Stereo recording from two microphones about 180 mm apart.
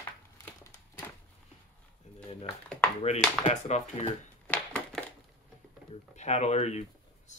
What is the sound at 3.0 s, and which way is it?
Speech, 35° left (ahead or behind).